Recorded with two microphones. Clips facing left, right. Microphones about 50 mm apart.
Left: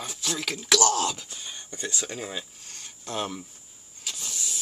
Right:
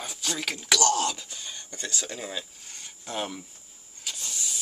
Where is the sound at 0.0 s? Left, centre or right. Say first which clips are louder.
Even; centre.